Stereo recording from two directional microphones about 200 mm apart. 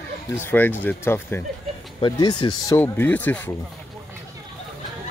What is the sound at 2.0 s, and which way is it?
Speech, 20° left (ahead or behind).